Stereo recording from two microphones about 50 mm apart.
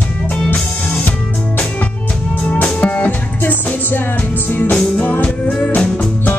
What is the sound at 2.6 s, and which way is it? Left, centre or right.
Music, left.